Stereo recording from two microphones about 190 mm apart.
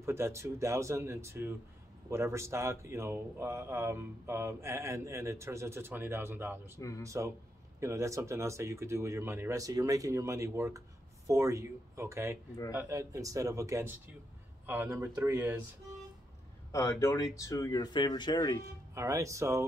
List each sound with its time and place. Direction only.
0.0 s speech: 15° right (ahead or behind)
16.7 s speech: 15° left (ahead or behind)
18.9 s speech: 15° right (ahead or behind)